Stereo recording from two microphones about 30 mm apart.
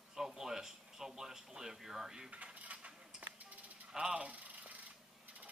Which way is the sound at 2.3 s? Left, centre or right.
Right.